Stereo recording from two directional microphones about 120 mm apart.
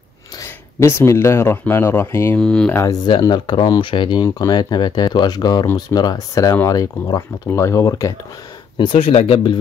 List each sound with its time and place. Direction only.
0.7 s speech: 20° left (ahead or behind)
2.4 s speech: 5° left (ahead or behind)
2.7 s speech: 25° left (ahead or behind)
3.2 s speech: 40° left (ahead or behind); by 8.1 s 25° left (ahead or behind)
8.7 s speech: 45° left (ahead or behind)
9.0 s speech: 55° left (ahead or behind)